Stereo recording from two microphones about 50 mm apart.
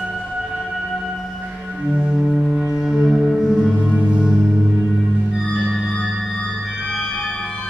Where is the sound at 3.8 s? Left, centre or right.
Right.